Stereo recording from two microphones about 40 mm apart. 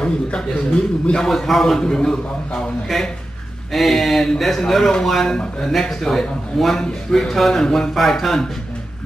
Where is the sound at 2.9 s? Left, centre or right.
Centre.